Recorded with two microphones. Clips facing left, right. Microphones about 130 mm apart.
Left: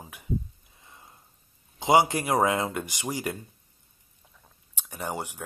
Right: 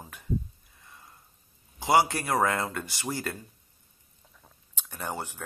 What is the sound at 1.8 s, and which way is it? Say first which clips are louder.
Speech: left 2 dB; 20° left (ahead or behind).